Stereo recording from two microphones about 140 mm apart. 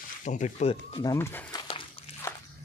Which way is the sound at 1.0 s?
20° left (ahead or behind).